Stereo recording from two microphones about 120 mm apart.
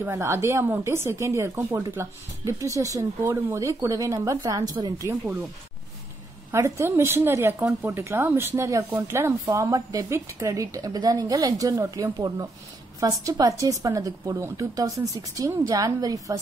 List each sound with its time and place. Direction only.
0.1 s speech: 20° right (ahead or behind)
6.5 s speech: 25° right (ahead or behind)